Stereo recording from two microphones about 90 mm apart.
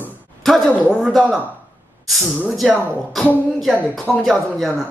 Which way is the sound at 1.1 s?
Centre (ahead or behind).